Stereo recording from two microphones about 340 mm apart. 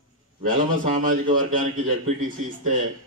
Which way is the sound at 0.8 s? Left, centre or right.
Right.